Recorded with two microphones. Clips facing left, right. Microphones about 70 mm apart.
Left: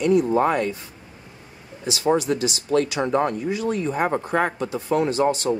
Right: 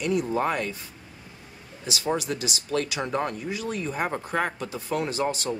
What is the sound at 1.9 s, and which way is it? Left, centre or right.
Speech, left.